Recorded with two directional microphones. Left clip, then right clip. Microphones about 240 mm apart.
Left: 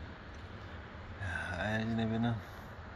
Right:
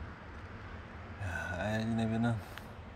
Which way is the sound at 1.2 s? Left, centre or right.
Centre.